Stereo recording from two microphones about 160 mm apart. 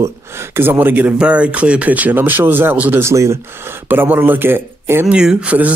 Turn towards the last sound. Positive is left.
turn(degrees=-10)  # may be behind; listen again after turning